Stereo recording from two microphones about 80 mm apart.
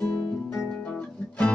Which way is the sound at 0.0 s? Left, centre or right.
Centre.